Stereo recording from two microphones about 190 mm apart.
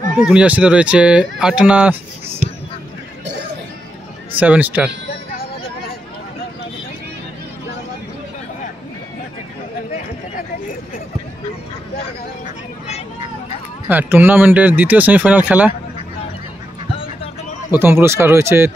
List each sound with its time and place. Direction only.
0.2 s speech: 5° right (ahead or behind)
4.4 s speech: 10° right (ahead or behind)
13.8 s speech: 10° right (ahead or behind)
16.9 s a sound: 30° left (ahead or behind)
17.6 s speech: 10° right (ahead or behind)